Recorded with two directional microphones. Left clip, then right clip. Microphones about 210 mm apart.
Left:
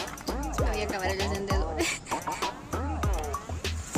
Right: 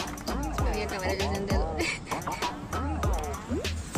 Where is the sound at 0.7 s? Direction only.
40° left (ahead or behind).